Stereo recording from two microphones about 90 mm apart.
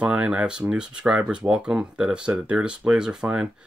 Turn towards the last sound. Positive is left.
turn(degrees=-10)  # may be behind; listen again after turning